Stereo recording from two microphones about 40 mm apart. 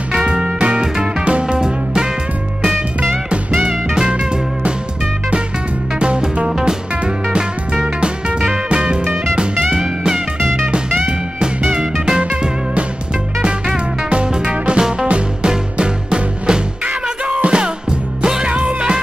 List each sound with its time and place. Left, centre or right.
0.1 s music: centre
3.6 s music: centre
5.9 s music: right
12.2 s music: right
14.1 s music: right